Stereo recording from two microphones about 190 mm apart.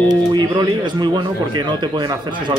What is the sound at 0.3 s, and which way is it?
Speech, 20° right (ahead or behind).